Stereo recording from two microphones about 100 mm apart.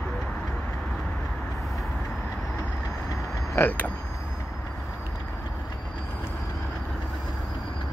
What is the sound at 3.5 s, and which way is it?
Creak, 20° left (ahead or behind).